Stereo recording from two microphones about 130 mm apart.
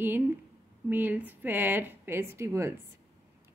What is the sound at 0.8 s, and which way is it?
A woman's voice, 15° right (ahead or behind).